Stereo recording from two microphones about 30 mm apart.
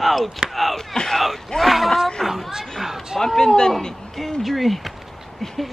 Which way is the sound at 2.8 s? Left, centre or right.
Centre.